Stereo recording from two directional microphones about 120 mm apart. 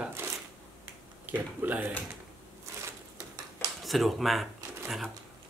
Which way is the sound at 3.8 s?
Centre (ahead or behind).